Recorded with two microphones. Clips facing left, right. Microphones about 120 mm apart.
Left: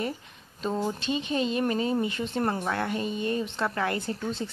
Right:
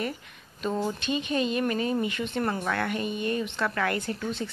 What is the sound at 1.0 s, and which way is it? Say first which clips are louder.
A woman's voice: even; 25° left (ahead or behind).